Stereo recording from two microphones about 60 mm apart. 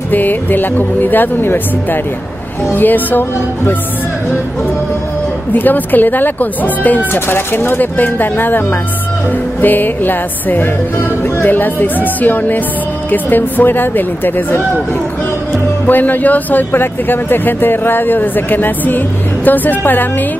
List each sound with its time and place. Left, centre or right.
0.1 s speech: left
5.5 s speech: left
7.2 s speech: left
15.9 s speech: left